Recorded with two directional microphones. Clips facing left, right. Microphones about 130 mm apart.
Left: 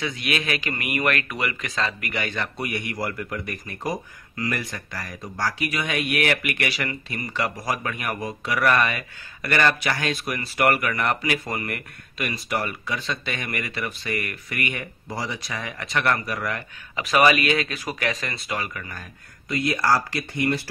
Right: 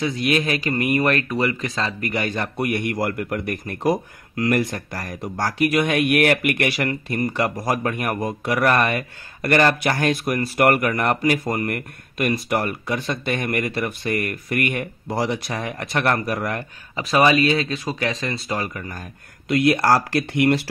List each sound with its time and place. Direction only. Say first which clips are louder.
0.0 s speech: right 6 dB; 40° right (ahead or behind)
2.6 s speech: right 8 dB; 55° right (ahead or behind)
16.9 s speech: right 2 dB; 30° right (ahead or behind)
19.4 s speech: right 6 dB; 75° right (ahead or behind)